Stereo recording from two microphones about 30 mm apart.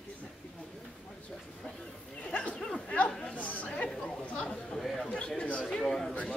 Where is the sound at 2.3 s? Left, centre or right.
Left.